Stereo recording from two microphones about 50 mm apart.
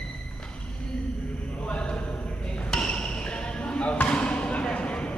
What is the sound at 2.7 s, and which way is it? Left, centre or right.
Basketball bounce, centre.